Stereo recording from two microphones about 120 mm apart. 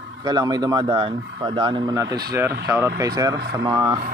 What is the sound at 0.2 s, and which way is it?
Speech, 35° right (ahead or behind).